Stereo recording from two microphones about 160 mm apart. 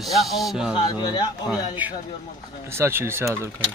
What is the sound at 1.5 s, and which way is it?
Speech, 10° right (ahead or behind).